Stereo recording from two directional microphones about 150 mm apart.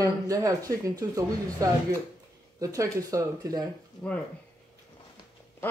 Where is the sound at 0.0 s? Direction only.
20° right (ahead or behind).